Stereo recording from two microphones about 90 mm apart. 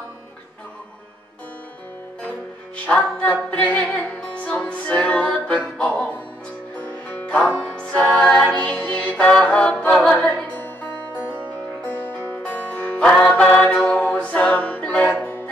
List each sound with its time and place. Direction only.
2.9 s music: 15° left (ahead or behind)